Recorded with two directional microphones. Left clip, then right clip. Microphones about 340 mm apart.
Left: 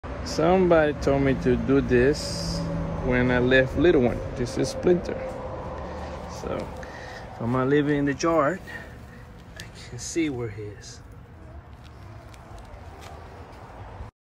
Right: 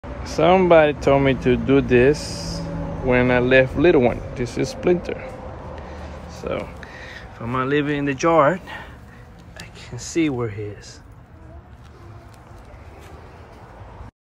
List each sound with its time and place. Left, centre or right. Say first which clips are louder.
0.3 s speech: right 6 dB; centre
6.3 s a sound: right 6 dB; centre
7.3 s speech: right 2 dB; centre